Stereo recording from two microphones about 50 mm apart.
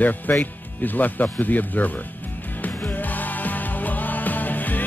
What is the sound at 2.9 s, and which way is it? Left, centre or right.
Music, left.